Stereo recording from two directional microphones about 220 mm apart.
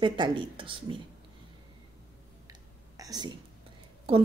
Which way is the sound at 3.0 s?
20° right (ahead or behind).